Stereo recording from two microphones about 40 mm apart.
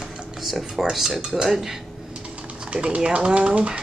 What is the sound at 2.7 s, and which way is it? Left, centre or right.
Speech, right.